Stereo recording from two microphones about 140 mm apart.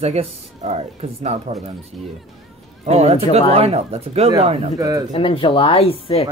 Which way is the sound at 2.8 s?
50° right (ahead or behind).